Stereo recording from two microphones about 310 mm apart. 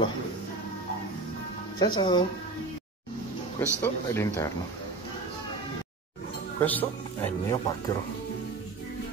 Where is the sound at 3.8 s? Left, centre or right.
Centre.